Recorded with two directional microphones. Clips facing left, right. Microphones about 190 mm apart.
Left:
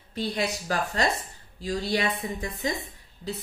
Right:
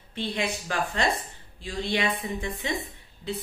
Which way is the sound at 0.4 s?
35° left (ahead or behind).